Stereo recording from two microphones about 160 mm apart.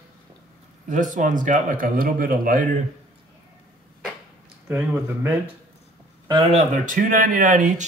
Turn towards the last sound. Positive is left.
turn(degrees=-50)  # may be behind; listen again after turning